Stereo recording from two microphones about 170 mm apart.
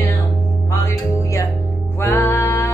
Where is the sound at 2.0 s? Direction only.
15° left (ahead or behind).